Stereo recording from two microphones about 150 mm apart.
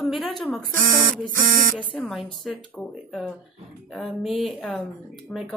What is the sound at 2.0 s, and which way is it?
A woman's voice, centre (ahead or behind).